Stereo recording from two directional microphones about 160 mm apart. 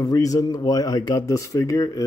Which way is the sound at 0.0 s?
20° left (ahead or behind).